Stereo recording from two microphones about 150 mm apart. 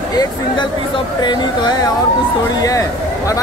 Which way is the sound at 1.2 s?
30° left (ahead or behind).